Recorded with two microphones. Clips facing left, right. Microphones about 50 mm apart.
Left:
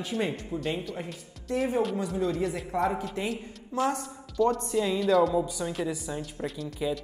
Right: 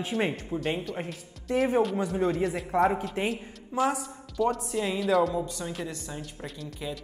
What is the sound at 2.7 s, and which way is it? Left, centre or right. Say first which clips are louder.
Speech: right 5 dB; centre.